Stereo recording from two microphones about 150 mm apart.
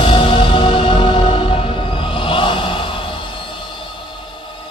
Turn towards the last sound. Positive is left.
turn(degrees=35)  # may be behind; listen again after turning